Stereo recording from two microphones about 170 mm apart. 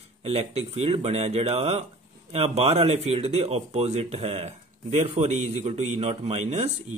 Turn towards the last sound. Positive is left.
turn(degrees=-40)  # may be behind; listen again after turning